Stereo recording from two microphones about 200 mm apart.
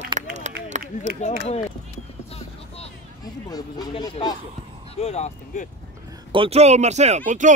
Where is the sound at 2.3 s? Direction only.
30° left (ahead or behind).